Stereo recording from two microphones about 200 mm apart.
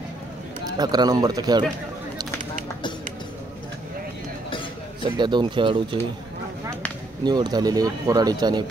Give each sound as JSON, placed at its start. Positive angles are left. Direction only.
{"t": 0.7, "sound": "speech", "side_deg": -20}
{"t": 5.1, "sound": "speech", "side_deg": -25}
{"t": 7.2, "sound": "speech", "side_deg": -20}